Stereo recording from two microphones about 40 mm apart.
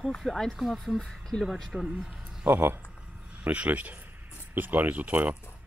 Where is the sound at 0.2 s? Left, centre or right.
Centre.